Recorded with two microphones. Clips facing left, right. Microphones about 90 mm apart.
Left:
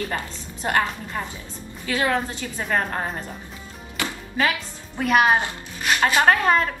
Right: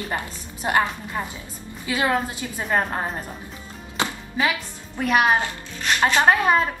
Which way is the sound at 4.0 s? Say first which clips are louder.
Right 3 dB; 25° right (ahead or behind).